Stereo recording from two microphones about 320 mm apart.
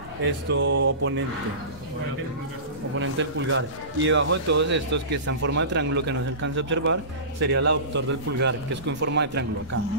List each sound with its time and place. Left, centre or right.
0.2 s speech: right
3.0 s speech: right